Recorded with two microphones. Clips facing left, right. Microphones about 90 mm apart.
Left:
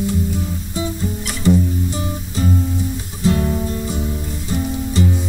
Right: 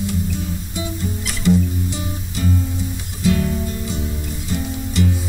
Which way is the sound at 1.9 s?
30° left (ahead or behind).